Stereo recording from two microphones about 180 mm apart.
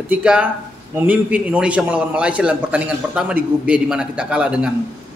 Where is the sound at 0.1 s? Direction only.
5° right (ahead or behind).